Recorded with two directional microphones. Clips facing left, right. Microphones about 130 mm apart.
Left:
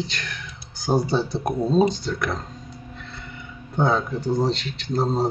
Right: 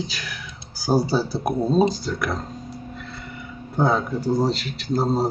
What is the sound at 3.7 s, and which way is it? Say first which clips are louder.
Speech: right 1 dB; 5° right (ahead or behind).